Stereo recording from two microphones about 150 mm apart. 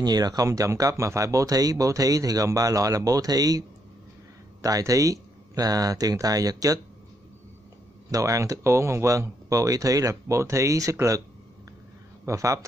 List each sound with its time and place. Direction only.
0.0 s speech: 25° right (ahead or behind)
8.1 s speech: 20° right (ahead or behind)
12.3 s speech: 20° right (ahead or behind)